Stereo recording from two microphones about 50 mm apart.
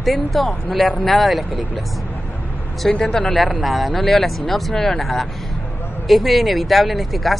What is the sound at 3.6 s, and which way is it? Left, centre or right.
Speech, centre.